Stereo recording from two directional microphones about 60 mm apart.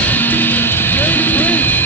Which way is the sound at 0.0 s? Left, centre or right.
Left.